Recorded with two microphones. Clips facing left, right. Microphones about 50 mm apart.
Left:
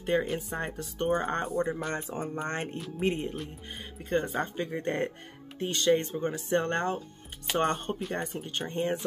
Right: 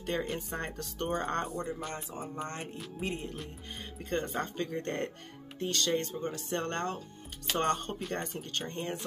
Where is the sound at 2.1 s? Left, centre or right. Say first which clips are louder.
Left 6 dB; left.